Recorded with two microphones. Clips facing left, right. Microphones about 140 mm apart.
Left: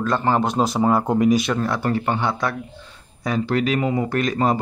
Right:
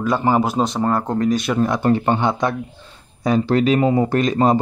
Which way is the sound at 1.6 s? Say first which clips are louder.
Right 5 dB; 20° right (ahead or behind).